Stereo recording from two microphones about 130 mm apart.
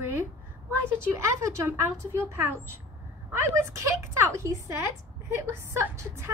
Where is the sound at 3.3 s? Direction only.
20° right (ahead or behind).